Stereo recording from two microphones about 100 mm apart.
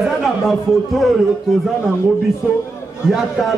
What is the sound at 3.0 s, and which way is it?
Speech, 5° right (ahead or behind).